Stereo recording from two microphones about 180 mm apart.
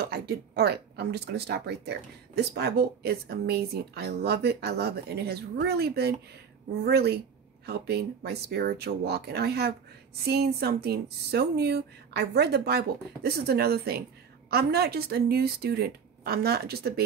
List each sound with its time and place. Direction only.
0.0 s speech: 60° right (ahead or behind)